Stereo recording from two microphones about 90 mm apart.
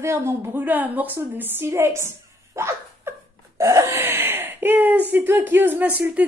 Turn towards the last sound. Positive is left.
turn(degrees=-15)  # may be behind; listen again after turning